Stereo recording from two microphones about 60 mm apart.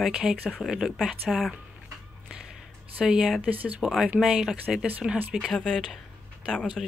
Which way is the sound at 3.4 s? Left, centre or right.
Right.